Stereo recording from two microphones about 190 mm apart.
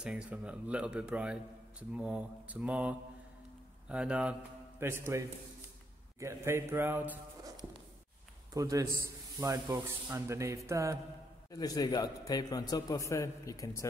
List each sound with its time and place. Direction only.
0.0 s a man's voice: 5° right (ahead or behind)
8.5 s a man's voice: 20° right (ahead or behind)
11.5 s a man's voice: 20° left (ahead or behind)